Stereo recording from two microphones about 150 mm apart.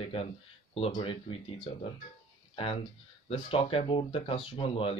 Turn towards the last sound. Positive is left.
turn(degrees=40)  # may be behind; listen again after turning